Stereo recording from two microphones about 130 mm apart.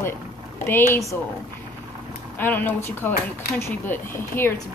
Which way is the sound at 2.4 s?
15° left (ahead or behind).